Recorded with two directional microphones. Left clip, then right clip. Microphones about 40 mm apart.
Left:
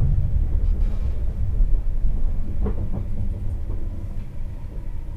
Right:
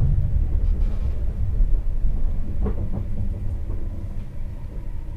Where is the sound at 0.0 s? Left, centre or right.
Centre.